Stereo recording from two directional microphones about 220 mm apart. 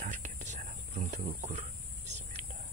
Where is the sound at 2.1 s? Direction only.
30° right (ahead or behind).